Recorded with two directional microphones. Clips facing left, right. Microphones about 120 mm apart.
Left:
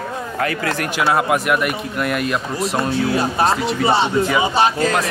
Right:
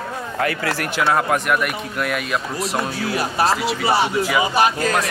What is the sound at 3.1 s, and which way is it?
Speech, 25° left (ahead or behind).